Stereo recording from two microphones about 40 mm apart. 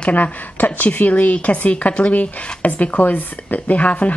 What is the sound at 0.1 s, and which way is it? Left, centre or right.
A woman's voice, left.